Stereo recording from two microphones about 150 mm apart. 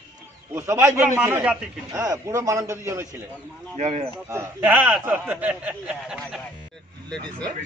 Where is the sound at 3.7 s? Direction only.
50° right (ahead or behind).